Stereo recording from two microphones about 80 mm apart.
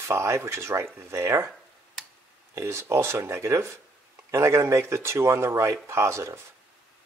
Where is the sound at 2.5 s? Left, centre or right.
Right.